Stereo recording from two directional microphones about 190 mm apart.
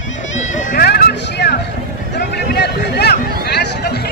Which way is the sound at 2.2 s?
60° left (ahead or behind).